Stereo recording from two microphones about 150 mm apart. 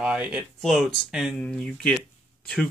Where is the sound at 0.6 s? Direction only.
5° left (ahead or behind).